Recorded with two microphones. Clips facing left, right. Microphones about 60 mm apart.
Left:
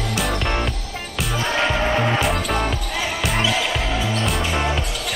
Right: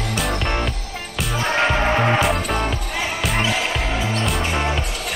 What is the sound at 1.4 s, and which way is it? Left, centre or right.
Music, right.